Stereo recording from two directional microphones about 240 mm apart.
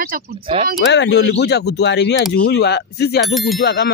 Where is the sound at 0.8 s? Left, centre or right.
Left.